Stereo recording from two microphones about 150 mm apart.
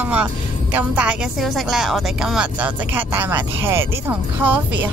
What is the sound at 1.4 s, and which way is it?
A woman's voice, centre (ahead or behind).